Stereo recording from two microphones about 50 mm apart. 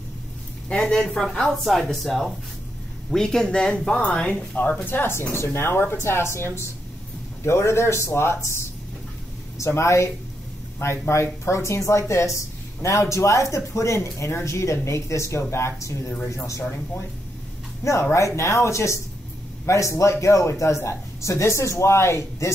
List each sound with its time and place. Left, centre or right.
0.7 s speech: centre
1.5 s speech: centre; by 4.4 s left
4.8 s a man's voice: left
16.4 s speech: left
18.1 s a man's voice: left